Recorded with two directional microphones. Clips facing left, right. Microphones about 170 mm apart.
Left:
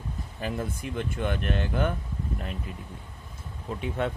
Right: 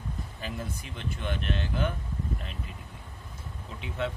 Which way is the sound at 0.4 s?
55° left (ahead or behind).